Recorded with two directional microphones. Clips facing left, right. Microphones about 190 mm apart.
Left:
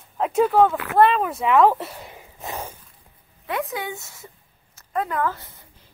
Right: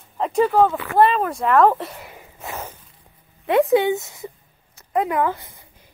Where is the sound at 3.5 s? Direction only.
30° right (ahead or behind).